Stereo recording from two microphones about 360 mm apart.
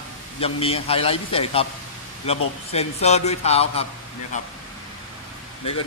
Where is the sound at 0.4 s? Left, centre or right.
Centre.